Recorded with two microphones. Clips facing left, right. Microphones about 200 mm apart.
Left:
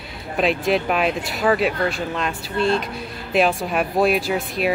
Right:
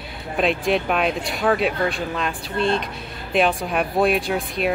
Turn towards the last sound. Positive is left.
turn(degrees=0)  # may be behind; listen again after turning